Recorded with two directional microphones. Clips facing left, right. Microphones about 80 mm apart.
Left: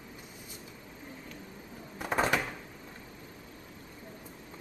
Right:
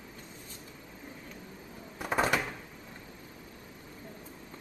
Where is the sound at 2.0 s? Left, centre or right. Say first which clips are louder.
Even; centre.